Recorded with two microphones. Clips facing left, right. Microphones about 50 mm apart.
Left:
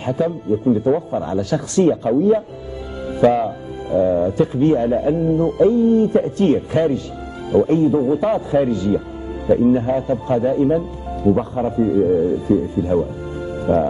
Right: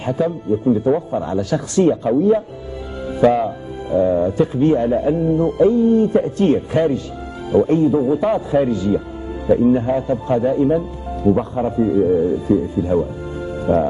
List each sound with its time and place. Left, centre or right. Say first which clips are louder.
0.0 s speech: even; right
1.4 s speech: even; centre
1.9 s speech: even; right
3.9 s speech: even; right
12.9 s speech: even; centre
13.5 s music: even; centre